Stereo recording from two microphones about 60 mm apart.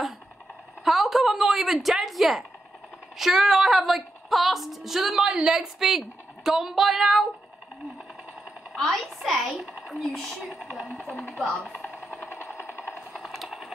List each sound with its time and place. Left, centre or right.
0.8 s a woman's voice: centre
8.7 s a woman's voice: centre
10.6 s speech: centre
11.4 s a woman's voice: centre
11.8 s a sound: left
12.5 s train: left
13.1 s a sound: centre